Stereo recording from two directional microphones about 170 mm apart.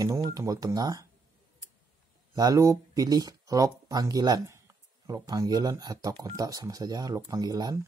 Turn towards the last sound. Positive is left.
turn(degrees=-25)  # may be behind; listen again after turning